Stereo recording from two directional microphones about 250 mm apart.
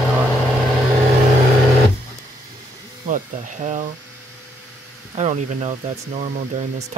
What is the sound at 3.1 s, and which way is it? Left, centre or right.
Speech, right.